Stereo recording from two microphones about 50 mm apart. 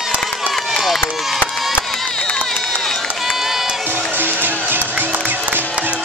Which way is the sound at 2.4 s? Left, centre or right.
Centre.